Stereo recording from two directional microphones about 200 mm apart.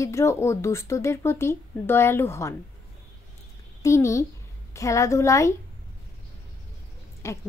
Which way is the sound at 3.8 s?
15° left (ahead or behind).